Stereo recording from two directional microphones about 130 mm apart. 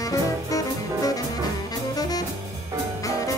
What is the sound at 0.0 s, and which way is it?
Music, 25° left (ahead or behind).